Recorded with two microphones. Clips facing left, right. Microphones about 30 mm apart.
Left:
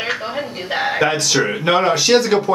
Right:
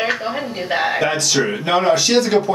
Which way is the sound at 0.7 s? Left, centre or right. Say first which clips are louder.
Even; centre.